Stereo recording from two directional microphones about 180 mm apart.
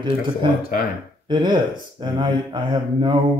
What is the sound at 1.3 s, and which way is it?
Speech, 25° right (ahead or behind).